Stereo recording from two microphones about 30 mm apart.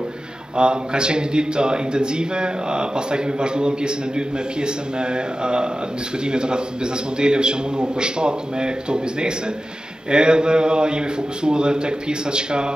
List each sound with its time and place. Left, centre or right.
0.6 s a man's voice: right